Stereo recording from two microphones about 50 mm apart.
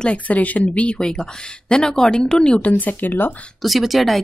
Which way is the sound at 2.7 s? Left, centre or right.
Left.